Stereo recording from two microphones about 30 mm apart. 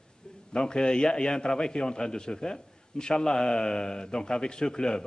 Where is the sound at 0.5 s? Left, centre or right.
Left.